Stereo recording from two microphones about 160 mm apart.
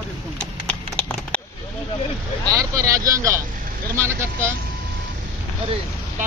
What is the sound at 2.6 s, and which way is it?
Speech, 20° right (ahead or behind).